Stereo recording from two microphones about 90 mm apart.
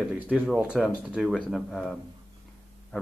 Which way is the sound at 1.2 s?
Centre (ahead or behind).